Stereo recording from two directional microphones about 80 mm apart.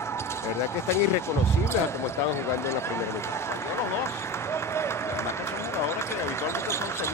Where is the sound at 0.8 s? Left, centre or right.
Left.